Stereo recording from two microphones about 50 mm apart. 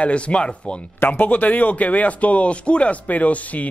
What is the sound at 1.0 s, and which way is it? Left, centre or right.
Speech, left.